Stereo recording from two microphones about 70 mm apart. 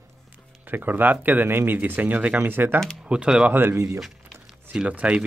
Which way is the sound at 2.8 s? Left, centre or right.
Centre.